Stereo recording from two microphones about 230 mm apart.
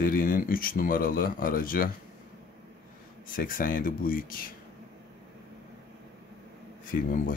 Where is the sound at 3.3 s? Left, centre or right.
Left.